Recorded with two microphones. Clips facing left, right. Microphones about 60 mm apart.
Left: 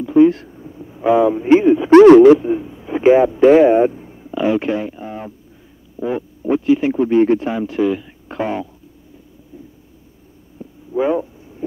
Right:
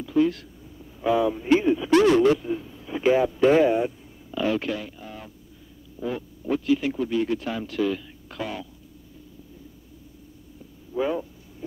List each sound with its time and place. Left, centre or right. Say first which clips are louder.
0.0 s a man's voice: left 11 dB; left
1.9 s speech: left 13 dB; left
2.2 s speech: left 12 dB; left
3.7 s a sound: left 11 dB; left
5.9 s speech: left 8 dB; left
9.5 s a sound: left 6 dB; left